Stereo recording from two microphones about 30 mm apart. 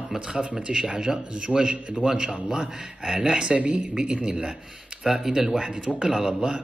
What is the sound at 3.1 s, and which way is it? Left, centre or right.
Speech, centre.